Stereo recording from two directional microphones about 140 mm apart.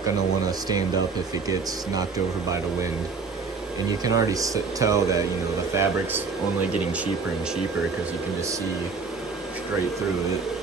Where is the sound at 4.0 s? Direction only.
25° right (ahead or behind).